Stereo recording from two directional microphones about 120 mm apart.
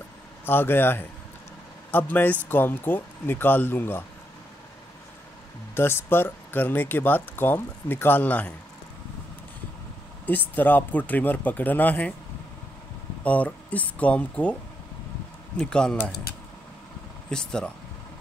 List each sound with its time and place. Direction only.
0.5 s speech: 20° left (ahead or behind)
5.8 s speech: 20° left (ahead or behind)
10.2 s speech: 15° left (ahead or behind)
13.2 s speech: 10° left (ahead or behind)
17.3 s speech: 5° left (ahead or behind)